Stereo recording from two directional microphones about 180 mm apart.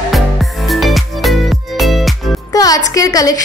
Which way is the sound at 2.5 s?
20° left (ahead or behind).